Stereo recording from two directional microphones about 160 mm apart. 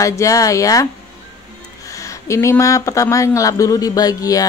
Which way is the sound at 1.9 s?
20° left (ahead or behind).